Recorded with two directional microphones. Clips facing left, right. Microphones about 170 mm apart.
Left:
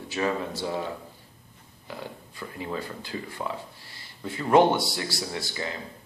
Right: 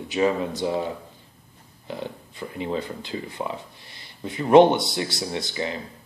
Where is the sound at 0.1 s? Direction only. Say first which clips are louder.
Right 5 dB; 20° right (ahead or behind).